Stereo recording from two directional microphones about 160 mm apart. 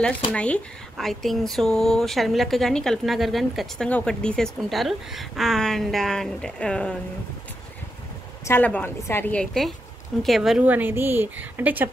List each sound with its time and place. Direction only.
0.3 s speech: 10° left (ahead or behind)
8.5 s a woman's voice: 10° left (ahead or behind); by 11.9 s 10° right (ahead or behind)